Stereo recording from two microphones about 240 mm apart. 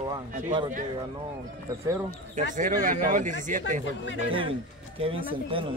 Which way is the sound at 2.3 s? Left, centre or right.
Right.